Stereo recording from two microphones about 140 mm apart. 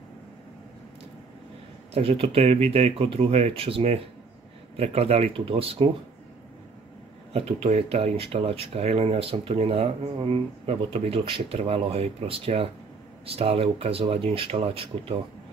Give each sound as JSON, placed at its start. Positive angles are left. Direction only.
{"t": 2.0, "sound": "speech", "side_deg": -45}
{"t": 7.3, "sound": "speech", "side_deg": -45}